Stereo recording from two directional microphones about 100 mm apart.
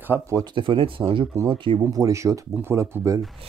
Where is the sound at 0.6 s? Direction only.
60° right (ahead or behind).